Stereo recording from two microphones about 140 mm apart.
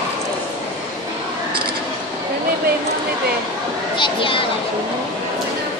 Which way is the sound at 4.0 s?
40° left (ahead or behind).